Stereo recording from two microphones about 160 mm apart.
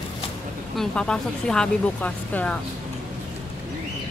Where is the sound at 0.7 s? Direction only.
5° left (ahead or behind).